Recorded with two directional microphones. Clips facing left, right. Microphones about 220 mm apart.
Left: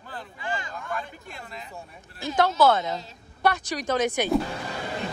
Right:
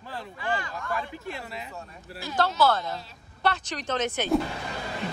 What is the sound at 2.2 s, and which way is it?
A woman's voice, 20° left (ahead or behind).